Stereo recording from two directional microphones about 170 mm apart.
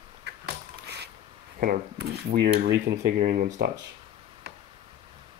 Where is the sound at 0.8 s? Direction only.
75° right (ahead or behind).